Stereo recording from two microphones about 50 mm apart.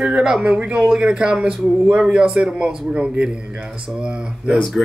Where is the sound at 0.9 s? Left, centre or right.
Centre.